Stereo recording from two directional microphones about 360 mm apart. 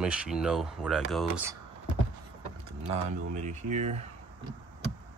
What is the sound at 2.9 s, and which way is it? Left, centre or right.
Speech, centre.